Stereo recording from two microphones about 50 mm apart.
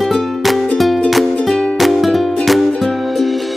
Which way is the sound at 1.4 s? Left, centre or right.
Centre.